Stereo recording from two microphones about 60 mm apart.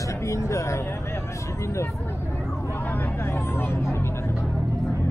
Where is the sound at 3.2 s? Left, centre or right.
Left.